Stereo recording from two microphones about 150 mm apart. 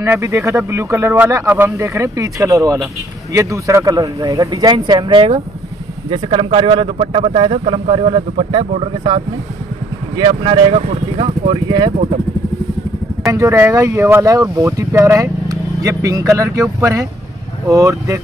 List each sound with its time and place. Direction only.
0.0 s a man's voice: 20° right (ahead or behind)
10.7 s speech: 45° right (ahead or behind)
13.3 s speech: 20° right (ahead or behind)